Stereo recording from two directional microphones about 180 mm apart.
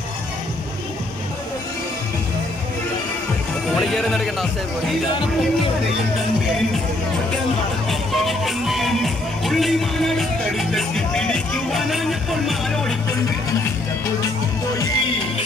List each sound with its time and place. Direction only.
3.7 s speech: centre (ahead or behind)
7.9 s music: centre (ahead or behind)
14.8 s music: 30° left (ahead or behind)